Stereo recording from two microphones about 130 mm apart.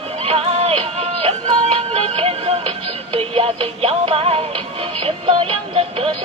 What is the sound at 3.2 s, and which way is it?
Synthetic singing, 45° right (ahead or behind).